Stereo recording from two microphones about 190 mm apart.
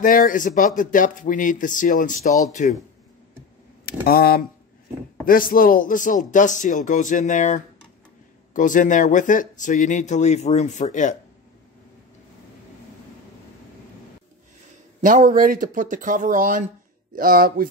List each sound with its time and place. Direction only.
0.0 s speech: 45° left (ahead or behind)
3.8 s speech: 50° left (ahead or behind)
15.0 s speech: 45° right (ahead or behind)